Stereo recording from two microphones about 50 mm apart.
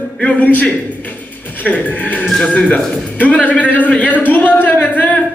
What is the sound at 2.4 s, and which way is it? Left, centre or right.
A man's voice, left.